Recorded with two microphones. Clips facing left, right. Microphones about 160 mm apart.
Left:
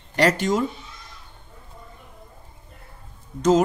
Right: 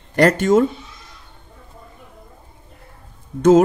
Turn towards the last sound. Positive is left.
turn(degrees=-55)  # may be behind; listen again after turning